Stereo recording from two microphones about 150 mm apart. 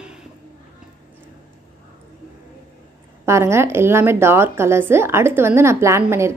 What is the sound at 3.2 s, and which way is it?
A woman's voice, 20° right (ahead or behind).